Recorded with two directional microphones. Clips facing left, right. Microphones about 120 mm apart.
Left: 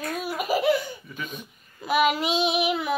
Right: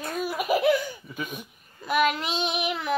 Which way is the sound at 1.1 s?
25° right (ahead or behind).